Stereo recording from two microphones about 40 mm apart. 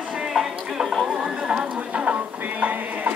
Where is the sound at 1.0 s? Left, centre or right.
Centre.